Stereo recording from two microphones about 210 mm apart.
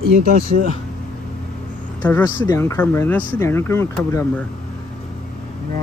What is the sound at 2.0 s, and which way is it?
Speech, 10° left (ahead or behind).